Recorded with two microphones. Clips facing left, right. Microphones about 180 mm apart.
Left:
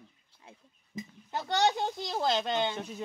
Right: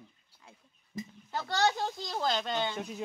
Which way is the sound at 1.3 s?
20° left (ahead or behind).